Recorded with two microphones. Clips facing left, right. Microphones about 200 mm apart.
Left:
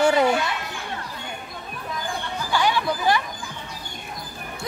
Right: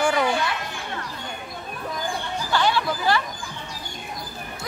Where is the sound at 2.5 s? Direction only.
15° left (ahead or behind).